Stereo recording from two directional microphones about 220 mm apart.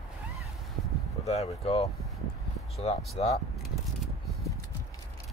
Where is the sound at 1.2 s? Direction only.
30° left (ahead or behind).